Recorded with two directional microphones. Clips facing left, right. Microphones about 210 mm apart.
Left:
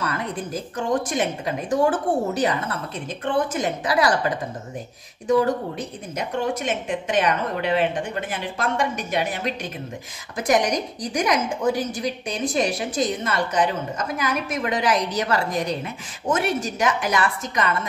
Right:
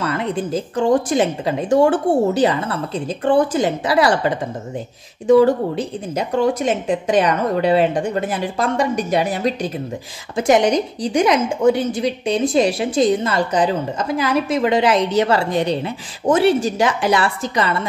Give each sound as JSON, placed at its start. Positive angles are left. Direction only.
{"t": 0.0, "sound": "a woman's voice", "side_deg": -25}